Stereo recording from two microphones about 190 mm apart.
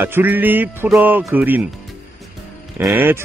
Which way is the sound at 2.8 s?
10° right (ahead or behind).